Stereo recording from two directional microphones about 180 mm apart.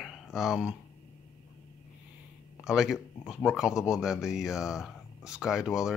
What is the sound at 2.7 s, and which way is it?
Speech, centre (ahead or behind).